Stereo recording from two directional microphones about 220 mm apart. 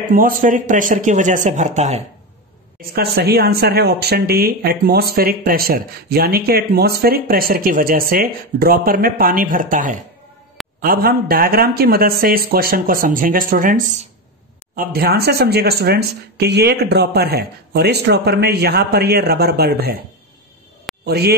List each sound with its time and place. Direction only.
0.1 s speech: 40° right (ahead or behind)
2.9 s speech: 45° right (ahead or behind)
21.0 s a man's voice: 45° right (ahead or behind)